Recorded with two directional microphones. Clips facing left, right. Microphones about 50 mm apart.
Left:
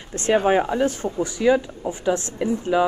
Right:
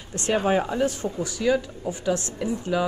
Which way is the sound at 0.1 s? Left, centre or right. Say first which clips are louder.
Left 4 dB; left.